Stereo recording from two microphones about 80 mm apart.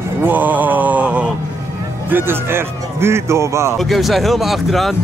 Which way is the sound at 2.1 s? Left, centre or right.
Right.